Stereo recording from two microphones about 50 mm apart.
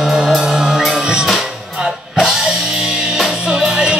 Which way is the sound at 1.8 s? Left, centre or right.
Centre.